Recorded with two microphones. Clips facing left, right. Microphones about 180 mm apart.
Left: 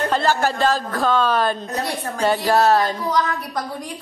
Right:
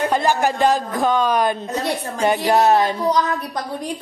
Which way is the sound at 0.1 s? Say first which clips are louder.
Right 1 dB; 15° right (ahead or behind).